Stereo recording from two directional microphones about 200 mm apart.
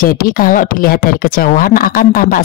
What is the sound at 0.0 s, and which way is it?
Speech, 45° left (ahead or behind).